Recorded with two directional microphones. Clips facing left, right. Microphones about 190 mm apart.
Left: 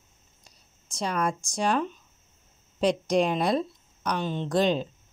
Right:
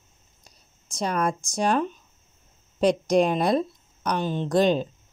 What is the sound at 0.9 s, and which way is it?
Speech, 45° right (ahead or behind).